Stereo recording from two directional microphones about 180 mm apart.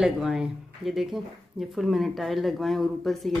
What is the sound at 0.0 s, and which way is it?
Speech, 5° right (ahead or behind).